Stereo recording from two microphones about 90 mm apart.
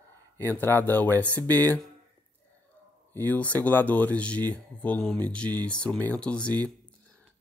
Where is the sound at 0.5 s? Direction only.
25° left (ahead or behind).